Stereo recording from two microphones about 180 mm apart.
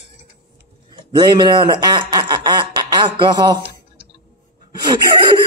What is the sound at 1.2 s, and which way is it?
Speech, 25° right (ahead or behind).